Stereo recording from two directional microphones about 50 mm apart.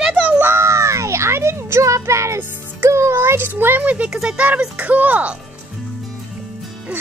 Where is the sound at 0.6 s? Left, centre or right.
Right.